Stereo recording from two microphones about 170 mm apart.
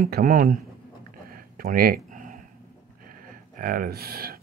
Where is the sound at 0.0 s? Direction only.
55° right (ahead or behind).